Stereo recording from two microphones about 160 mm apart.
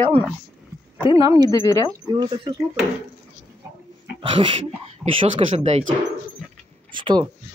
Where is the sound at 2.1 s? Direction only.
30° right (ahead or behind).